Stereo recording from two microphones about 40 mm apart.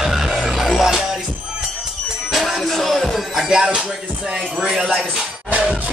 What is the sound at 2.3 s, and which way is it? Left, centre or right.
Music, centre.